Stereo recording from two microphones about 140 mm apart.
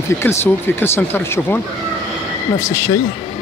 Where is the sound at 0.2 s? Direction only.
15° left (ahead or behind).